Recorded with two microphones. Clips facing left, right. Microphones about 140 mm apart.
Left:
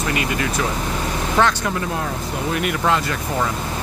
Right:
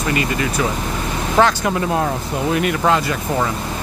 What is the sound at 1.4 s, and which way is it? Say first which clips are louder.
Speech: right 3 dB; 30° right (ahead or behind).